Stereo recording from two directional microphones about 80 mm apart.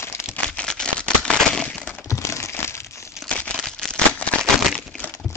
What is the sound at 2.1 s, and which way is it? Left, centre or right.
Crumpling, left.